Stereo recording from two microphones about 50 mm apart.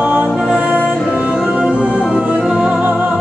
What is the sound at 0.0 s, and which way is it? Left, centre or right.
Music, right.